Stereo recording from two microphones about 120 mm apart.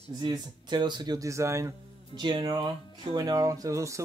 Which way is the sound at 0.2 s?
40° right (ahead or behind).